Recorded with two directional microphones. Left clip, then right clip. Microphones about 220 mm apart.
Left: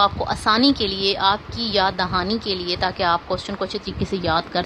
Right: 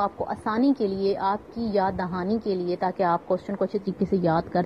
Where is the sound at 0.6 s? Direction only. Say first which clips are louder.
Left 4 dB; centre (ahead or behind).